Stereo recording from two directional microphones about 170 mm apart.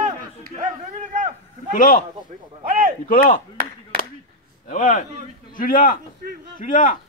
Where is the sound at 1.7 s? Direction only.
50° left (ahead or behind).